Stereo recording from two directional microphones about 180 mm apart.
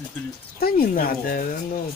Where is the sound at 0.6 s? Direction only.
50° left (ahead or behind).